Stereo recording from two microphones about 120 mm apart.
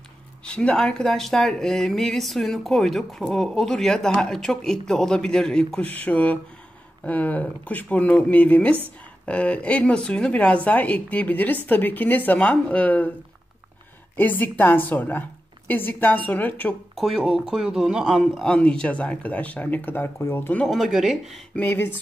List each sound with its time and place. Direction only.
0.5 s speech: 10° left (ahead or behind)
14.1 s speech: 15° left (ahead or behind)
16.9 s speech: centre (ahead or behind); by 20.6 s 15° left (ahead or behind)
20.6 s speech: centre (ahead or behind)
21.5 s speech: 15° left (ahead or behind)